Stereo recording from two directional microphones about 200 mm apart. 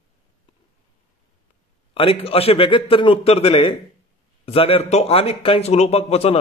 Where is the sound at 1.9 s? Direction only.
30° left (ahead or behind).